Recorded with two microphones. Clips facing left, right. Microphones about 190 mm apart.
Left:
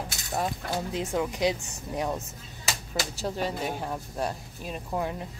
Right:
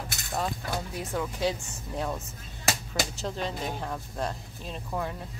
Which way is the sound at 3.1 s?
10° left (ahead or behind).